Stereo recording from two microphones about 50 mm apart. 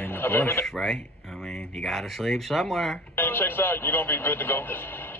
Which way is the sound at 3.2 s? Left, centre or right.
Left.